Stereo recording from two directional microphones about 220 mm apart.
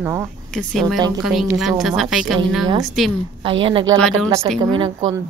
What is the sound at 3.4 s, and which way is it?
A woman's voice, 25° right (ahead or behind).